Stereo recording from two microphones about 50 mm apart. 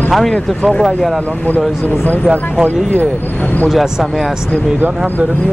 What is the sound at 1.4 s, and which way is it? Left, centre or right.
Speech, left.